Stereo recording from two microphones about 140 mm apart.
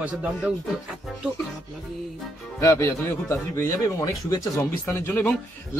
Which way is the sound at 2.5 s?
20° left (ahead or behind).